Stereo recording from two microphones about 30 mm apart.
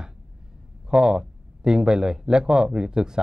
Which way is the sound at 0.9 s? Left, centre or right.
Right.